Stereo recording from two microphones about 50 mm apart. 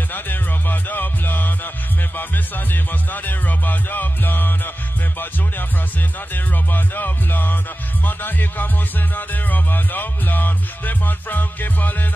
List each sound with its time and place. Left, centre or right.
0.1 s music: left
6.3 s music: left